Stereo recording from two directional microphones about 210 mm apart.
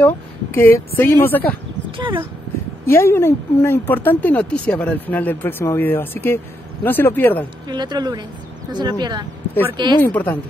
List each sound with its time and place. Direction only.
0.0 s speech: 10° left (ahead or behind)
1.9 s a sound: 25° right (ahead or behind)
2.9 s speech: 10° left (ahead or behind)
7.6 s speech: 20° right (ahead or behind)
10.1 s speech: 10° left (ahead or behind)